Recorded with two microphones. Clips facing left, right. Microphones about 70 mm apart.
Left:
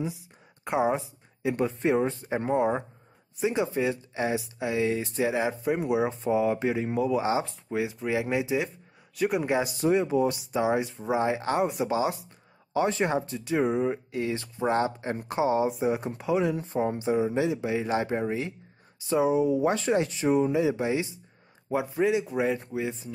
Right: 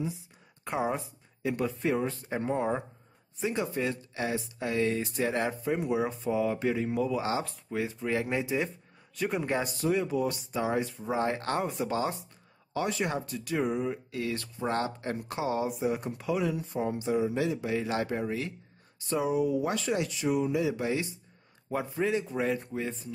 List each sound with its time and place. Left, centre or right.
0.7 s speech: centre
5.6 s speech: centre
9.8 s speech: left
12.7 s speech: left
16.4 s speech: left
17.0 s speech: left; by 22.9 s centre